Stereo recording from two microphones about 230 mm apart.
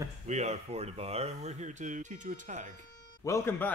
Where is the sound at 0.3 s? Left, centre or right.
Right.